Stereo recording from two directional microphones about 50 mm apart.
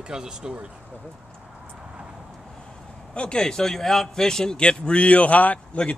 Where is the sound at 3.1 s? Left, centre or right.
Centre.